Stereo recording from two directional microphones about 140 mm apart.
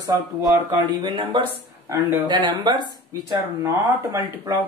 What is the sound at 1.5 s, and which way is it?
Speech, 15° right (ahead or behind).